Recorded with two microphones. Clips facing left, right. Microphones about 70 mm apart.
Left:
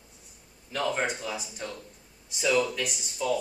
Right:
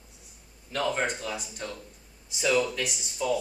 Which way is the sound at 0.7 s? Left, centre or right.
Centre.